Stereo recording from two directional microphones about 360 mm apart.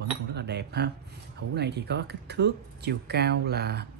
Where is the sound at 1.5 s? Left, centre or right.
Right.